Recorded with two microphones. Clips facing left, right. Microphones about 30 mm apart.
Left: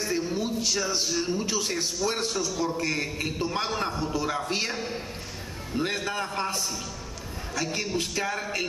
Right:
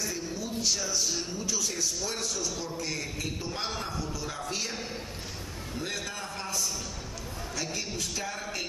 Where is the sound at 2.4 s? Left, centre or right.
Centre.